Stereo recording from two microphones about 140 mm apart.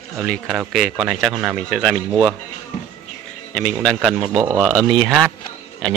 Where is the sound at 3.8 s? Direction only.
Centre (ahead or behind).